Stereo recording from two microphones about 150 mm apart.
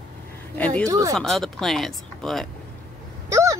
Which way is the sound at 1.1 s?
Centre (ahead or behind).